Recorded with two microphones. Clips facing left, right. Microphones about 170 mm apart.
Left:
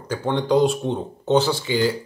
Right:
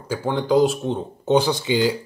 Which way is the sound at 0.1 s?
5° right (ahead or behind).